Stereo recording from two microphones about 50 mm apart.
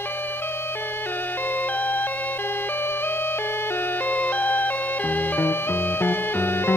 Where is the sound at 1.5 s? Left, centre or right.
Left.